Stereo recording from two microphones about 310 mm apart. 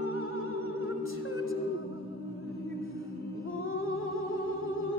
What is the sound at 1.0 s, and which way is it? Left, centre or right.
A capella, left.